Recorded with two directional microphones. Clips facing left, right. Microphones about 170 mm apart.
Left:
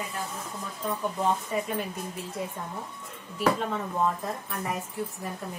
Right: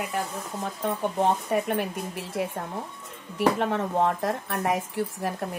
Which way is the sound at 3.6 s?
70° right (ahead or behind).